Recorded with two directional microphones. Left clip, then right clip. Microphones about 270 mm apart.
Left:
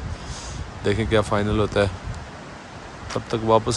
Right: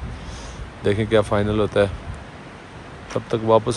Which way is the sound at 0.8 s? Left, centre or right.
Centre.